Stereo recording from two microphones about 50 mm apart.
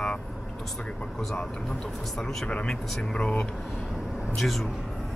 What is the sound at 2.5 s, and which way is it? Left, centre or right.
Speech, left.